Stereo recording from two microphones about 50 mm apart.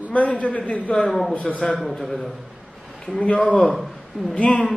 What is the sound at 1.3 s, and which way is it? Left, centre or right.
Speech, left.